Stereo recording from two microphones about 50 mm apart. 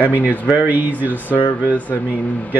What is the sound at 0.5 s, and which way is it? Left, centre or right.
Speech, right.